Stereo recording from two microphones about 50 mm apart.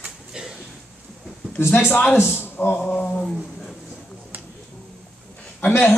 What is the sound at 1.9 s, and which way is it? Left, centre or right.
Speech, left.